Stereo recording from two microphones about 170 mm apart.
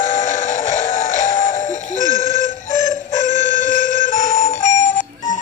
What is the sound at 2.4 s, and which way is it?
Clock, 45° left (ahead or behind).